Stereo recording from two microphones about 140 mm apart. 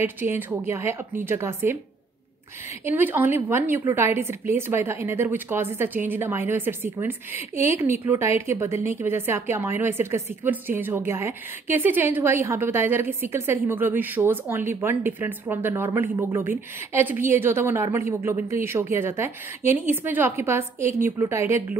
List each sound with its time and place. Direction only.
0.0 s speech: 15° right (ahead or behind)
2.8 s speech: 15° right (ahead or behind)